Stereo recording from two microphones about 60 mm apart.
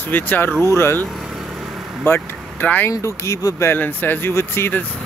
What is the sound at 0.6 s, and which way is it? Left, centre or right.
Speech, left.